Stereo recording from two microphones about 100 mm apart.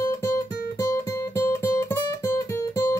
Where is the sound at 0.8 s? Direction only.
35° left (ahead or behind).